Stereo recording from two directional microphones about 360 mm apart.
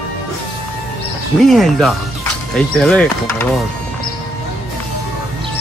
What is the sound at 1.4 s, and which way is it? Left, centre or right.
Speech, centre.